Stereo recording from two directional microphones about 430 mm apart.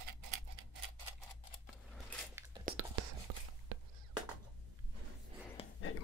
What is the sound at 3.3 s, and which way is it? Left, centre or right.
Whispering, right.